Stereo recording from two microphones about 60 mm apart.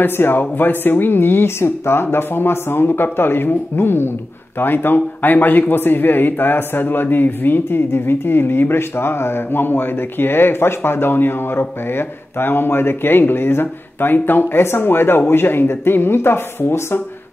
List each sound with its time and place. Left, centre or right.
0.0 s a man's voice: left